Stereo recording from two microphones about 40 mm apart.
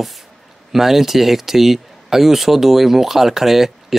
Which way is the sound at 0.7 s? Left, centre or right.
Centre.